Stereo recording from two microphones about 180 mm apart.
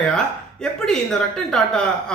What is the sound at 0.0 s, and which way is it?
A man's voice, 5° left (ahead or behind).